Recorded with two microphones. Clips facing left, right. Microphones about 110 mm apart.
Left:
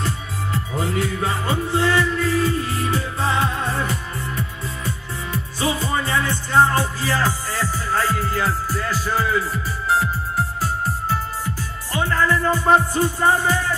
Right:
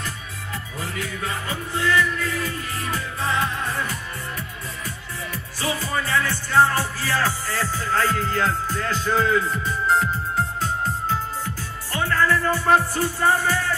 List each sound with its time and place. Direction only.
0.0 s music: 30° left (ahead or behind); by 10.7 s 5° left (ahead or behind)
11.9 s music: 15° left (ahead or behind)